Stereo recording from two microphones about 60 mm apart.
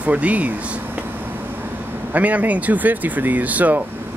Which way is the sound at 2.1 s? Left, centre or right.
Right.